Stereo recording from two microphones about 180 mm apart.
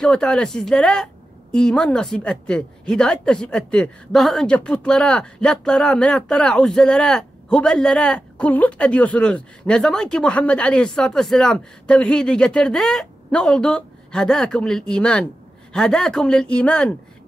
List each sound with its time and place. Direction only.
0.0 s a woman's voice: 5° left (ahead or behind)